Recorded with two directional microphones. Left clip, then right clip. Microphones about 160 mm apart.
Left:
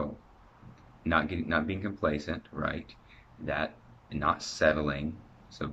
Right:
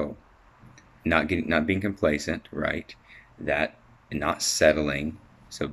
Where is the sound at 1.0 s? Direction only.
10° right (ahead or behind).